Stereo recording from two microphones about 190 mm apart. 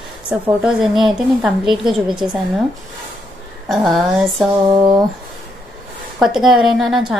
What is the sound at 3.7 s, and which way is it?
Speech, centre (ahead or behind).